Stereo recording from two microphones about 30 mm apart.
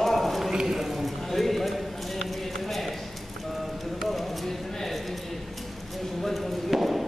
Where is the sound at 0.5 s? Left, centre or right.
Right.